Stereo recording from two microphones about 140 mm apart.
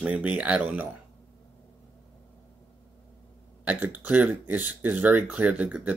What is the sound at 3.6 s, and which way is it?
Speech, 10° right (ahead or behind).